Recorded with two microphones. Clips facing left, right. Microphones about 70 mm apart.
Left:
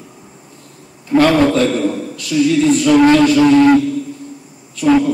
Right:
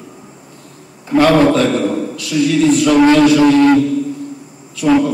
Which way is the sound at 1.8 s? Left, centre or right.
Right.